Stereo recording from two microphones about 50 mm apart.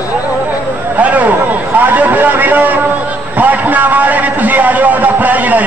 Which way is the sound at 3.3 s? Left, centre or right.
Right.